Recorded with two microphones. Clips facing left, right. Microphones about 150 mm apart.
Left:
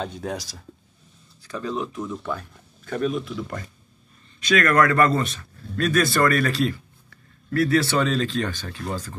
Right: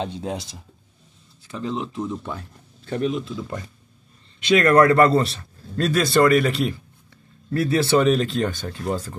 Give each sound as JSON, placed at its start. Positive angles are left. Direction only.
{"t": 0.0, "sound": "a man's voice", "side_deg": -25}